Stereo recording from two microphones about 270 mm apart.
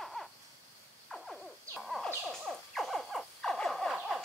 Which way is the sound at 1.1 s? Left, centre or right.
Centre.